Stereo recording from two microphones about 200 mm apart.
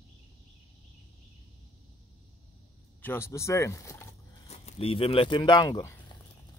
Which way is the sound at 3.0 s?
10° left (ahead or behind).